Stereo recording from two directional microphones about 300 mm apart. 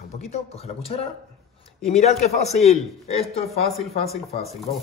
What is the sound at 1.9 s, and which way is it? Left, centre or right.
A man's voice, left.